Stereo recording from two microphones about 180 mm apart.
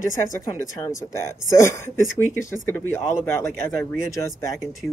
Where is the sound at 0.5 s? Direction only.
20° left (ahead or behind).